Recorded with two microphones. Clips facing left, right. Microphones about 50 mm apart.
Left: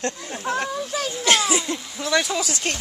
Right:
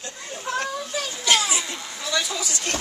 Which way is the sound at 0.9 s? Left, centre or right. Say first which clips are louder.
Left 2 dB; left.